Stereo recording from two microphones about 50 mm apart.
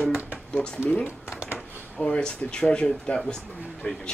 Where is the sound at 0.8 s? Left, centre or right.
Right.